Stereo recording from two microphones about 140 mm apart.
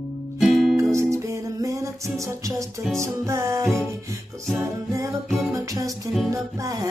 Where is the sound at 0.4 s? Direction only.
Centre (ahead or behind).